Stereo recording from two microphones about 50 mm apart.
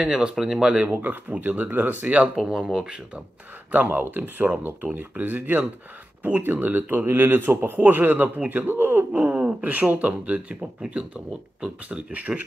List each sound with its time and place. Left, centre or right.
0.0 s speech: centre
0.8 s a man's voice: right
2.3 s speech: centre
3.7 s a man's voice: right; by 12.0 s centre
12.1 s a man's voice: right